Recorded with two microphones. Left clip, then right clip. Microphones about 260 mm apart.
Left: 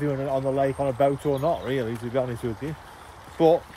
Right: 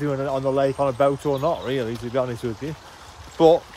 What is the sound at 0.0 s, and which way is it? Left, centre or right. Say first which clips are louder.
Speech: right 2 dB; centre.